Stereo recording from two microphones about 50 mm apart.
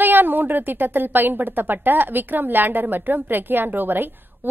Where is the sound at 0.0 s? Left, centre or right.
Right.